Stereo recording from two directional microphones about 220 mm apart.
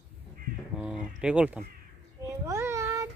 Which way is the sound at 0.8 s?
5° right (ahead or behind).